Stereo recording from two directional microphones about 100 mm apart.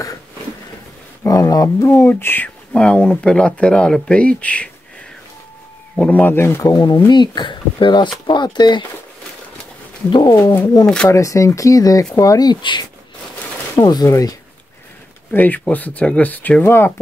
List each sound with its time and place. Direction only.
1.2 s speech: 35° left (ahead or behind); by 4.6 s 15° left (ahead or behind)
5.9 s speech: 15° left (ahead or behind)
7.1 s speech: 50° left (ahead or behind)
10.0 s a sound: 55° left (ahead or behind)
10.3 s speech: 25° left (ahead or behind)
15.3 s speech: 15° left (ahead or behind)